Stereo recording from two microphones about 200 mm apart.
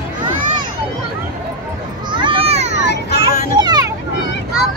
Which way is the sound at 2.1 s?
25° right (ahead or behind).